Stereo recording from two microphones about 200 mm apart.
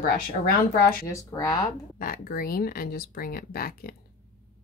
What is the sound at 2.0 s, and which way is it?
Speech, 45° left (ahead or behind).